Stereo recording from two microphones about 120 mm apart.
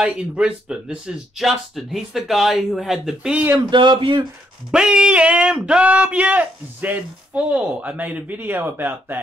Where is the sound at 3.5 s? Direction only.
40° right (ahead or behind).